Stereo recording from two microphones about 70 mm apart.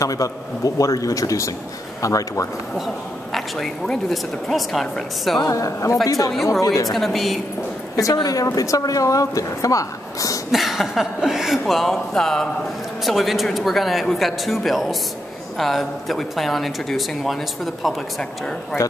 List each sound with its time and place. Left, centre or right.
0.0 s a woman's voice: left
3.3 s speech: centre
5.4 s a woman's voice: left
6.9 s speech: centre
7.9 s speech: left
10.5 s speech: centre
18.8 s a woman's voice: left